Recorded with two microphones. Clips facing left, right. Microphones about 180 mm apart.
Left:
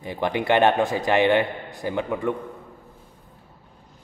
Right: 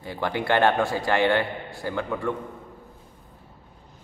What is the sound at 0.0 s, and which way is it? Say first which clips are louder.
A man's voice: left 3 dB; 20° left (ahead or behind).